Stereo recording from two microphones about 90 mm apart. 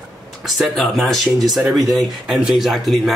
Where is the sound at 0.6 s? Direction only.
Centre (ahead or behind).